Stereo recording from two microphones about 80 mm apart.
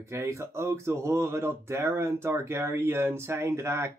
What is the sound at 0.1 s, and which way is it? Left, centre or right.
Speech, right.